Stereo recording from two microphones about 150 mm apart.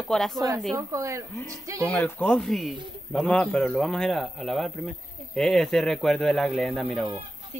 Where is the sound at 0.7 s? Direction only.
20° right (ahead or behind).